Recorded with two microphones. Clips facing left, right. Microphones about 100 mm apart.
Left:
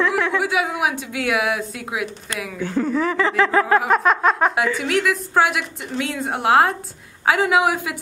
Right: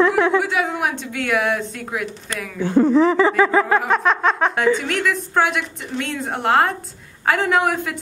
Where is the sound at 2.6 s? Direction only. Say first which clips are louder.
Right 7 dB; 20° right (ahead or behind).